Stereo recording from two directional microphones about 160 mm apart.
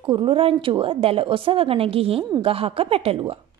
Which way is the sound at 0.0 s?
30° right (ahead or behind).